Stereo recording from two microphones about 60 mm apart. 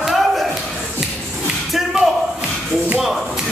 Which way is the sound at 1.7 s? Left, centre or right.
Centre.